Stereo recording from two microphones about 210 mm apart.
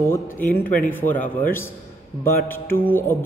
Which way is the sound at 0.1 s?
10° left (ahead or behind).